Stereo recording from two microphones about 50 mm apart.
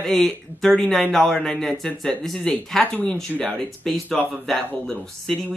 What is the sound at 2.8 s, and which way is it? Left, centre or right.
Speech, left.